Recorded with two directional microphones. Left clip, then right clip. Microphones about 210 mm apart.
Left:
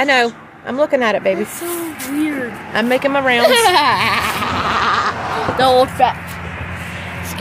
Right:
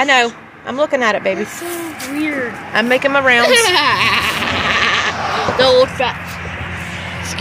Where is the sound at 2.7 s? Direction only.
10° left (ahead or behind).